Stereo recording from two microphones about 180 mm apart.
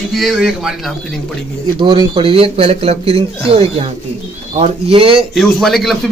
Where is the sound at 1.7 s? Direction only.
25° right (ahead or behind).